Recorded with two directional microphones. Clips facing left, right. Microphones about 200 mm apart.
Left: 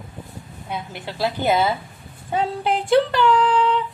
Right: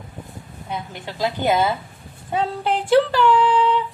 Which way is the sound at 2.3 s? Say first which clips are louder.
Even; centre (ahead or behind).